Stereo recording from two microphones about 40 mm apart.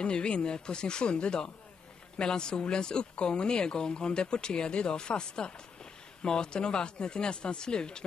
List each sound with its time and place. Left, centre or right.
0.0 s speech: left